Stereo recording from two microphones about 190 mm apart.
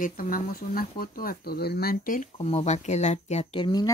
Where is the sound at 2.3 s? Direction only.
35° left (ahead or behind).